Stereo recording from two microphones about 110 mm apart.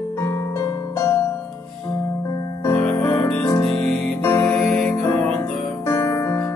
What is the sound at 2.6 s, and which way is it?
Music, 25° left (ahead or behind).